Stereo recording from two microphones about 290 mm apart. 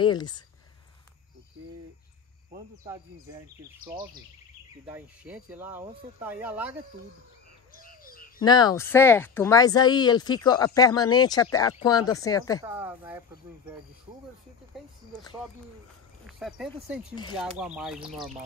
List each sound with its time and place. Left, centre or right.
0.0 s speech: centre
2.8 s speech: centre
7.8 s bird: left
8.4 s speech: centre
12.6 s speech: centre
16.3 s speech: centre